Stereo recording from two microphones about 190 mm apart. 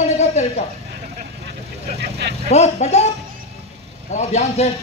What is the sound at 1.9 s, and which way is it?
Vehicle, 65° right (ahead or behind).